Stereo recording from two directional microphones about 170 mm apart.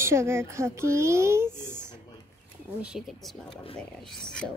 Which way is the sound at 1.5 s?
15° right (ahead or behind).